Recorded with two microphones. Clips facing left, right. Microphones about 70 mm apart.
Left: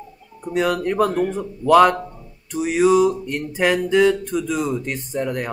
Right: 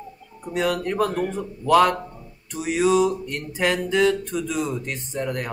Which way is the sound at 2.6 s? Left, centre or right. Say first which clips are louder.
Left 4 dB; left.